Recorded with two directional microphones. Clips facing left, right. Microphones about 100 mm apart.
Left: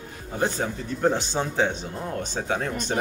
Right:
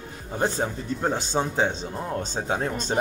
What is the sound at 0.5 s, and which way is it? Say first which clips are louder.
Speech: right 1 dB; 25° right (ahead or behind).